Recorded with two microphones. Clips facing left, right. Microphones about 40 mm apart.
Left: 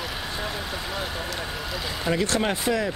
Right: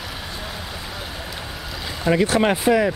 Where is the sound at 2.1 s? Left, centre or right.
Centre.